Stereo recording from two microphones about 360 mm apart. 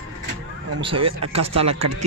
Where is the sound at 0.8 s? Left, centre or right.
Centre.